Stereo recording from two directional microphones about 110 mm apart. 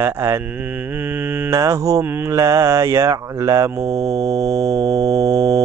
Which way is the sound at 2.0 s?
20° right (ahead or behind).